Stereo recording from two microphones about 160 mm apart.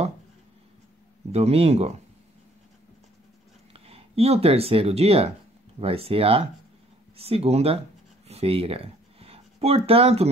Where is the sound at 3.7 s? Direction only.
35° right (ahead or behind).